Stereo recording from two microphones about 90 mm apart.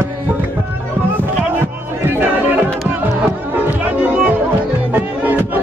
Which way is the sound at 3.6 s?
20° right (ahead or behind).